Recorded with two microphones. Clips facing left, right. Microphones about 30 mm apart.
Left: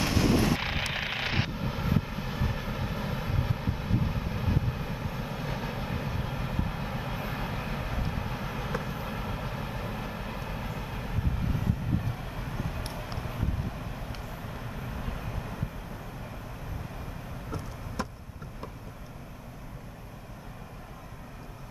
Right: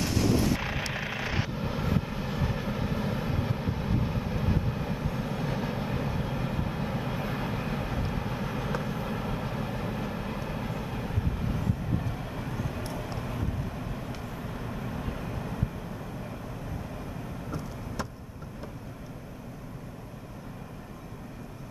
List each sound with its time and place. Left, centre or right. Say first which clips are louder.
0.0 s artillery fire: left 1 dB; left
0.6 s vehicle: left 1 dB; left
1.5 s vehicle: right 1 dB; centre